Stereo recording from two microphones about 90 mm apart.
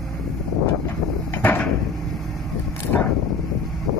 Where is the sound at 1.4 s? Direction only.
20° left (ahead or behind).